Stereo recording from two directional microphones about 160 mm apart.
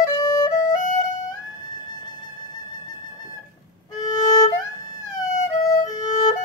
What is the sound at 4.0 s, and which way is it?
Violin, 25° left (ahead or behind).